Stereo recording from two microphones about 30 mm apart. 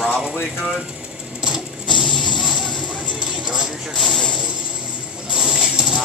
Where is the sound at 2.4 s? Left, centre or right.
Right.